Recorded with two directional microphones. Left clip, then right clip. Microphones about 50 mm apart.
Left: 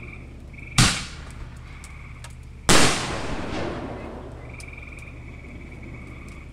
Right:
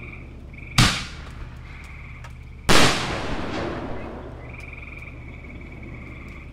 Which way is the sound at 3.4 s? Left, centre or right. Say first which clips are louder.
Right 1 dB; centre.